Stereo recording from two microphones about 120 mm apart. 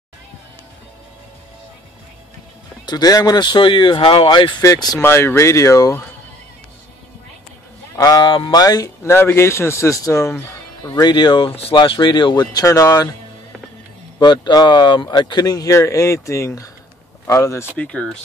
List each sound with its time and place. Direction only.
2.8 s speech: 35° left (ahead or behind)
7.9 s speech: 30° left (ahead or behind)
14.2 s speech: 35° left (ahead or behind)
17.7 s speech: 10° left (ahead or behind)